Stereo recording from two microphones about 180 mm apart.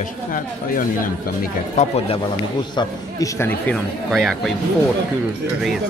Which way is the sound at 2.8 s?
15° left (ahead or behind).